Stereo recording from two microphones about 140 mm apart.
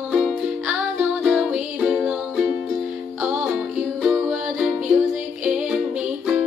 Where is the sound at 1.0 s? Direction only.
10° right (ahead or behind).